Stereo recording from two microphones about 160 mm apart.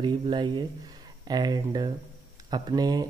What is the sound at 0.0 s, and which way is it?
Speech, 30° right (ahead or behind).